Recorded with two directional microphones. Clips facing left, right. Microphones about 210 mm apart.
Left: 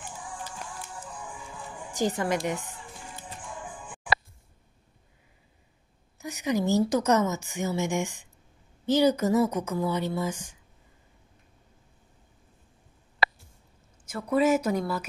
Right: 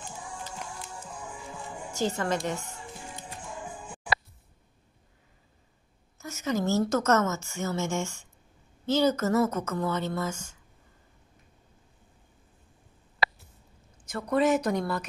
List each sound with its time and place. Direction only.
1.9 s a woman's voice: 15° left (ahead or behind)
6.1 s a woman's voice: 15° left (ahead or behind)
14.0 s a woman's voice: 5° left (ahead or behind)